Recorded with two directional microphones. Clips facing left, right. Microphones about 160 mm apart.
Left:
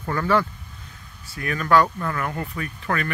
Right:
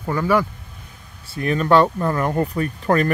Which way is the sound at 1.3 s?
25° right (ahead or behind).